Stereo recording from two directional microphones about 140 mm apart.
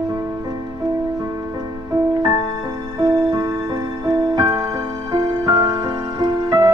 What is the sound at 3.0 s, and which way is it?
Music, 25° right (ahead or behind).